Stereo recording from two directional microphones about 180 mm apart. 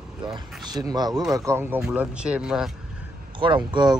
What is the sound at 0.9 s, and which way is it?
Speech, 20° right (ahead or behind).